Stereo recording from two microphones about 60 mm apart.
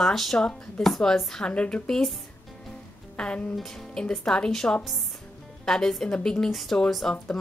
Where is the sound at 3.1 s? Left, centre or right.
Centre.